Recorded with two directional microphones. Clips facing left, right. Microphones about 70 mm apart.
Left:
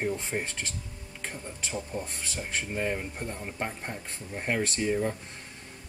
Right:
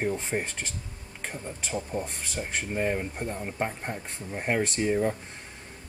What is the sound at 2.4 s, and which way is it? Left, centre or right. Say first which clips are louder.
Speech: right 3 dB; centre.